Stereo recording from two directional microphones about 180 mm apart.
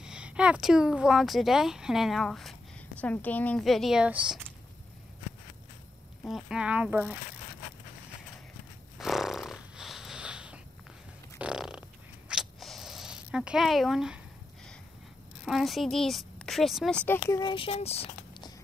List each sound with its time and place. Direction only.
0.0 s speech: 5° right (ahead or behind)
6.2 s speech: 5° right (ahead or behind)
8.9 s snoring: centre (ahead or behind)
11.3 s a sound: 5° right (ahead or behind)
15.4 s speech: centre (ahead or behind)
17.4 s speech: 25° left (ahead or behind)